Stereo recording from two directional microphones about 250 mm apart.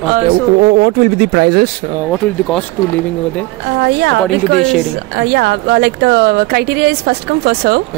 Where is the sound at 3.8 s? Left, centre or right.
Right.